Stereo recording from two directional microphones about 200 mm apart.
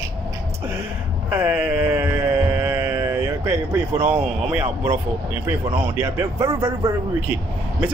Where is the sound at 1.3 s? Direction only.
10° right (ahead or behind).